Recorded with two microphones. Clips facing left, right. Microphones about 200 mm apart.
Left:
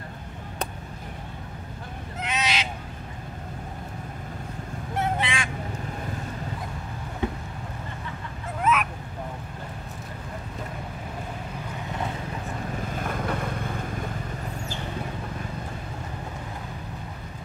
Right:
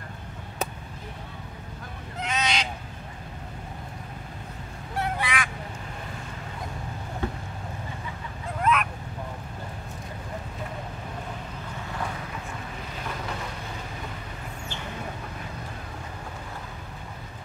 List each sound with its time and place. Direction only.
2.1 s fowl: 5° left (ahead or behind)
4.9 s honk: 25° left (ahead or behind)
7.2 s boat: 15° left (ahead or behind)
8.5 s goose: 5° left (ahead or behind)
12.9 s boat: 50° left (ahead or behind)